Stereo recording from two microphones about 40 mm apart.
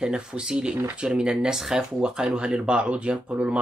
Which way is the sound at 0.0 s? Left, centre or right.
Right.